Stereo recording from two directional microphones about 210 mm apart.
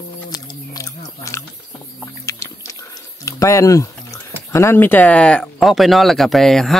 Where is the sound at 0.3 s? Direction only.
15° left (ahead or behind).